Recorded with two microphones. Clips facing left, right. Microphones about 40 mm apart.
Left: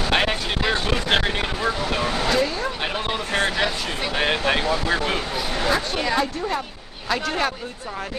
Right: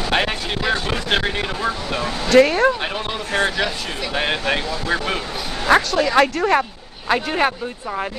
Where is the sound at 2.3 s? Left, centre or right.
Right.